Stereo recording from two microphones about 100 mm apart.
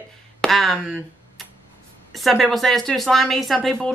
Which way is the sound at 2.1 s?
Centre (ahead or behind).